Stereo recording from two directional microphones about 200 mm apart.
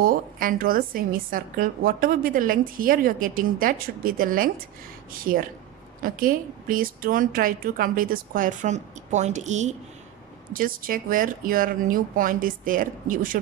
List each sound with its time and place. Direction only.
0.0 s a woman's voice: 45° right (ahead or behind)